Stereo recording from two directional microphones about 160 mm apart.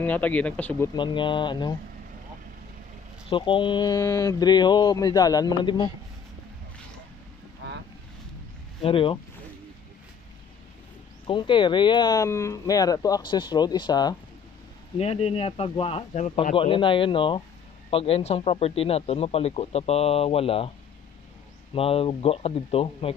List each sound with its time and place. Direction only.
0.0 s speech: 10° left (ahead or behind)
0.9 s speech: 30° left (ahead or behind)
3.3 s speech: 30° left (ahead or behind)
8.8 s speech: 35° left (ahead or behind)
11.2 s speech: 30° left (ahead or behind)
15.0 s speech: 40° left (ahead or behind)
21.7 s speech: 35° left (ahead or behind)